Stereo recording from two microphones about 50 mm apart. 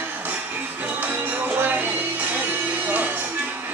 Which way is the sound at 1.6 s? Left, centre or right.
Right.